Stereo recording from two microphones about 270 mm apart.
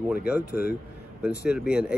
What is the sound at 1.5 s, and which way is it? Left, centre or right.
Speech, centre.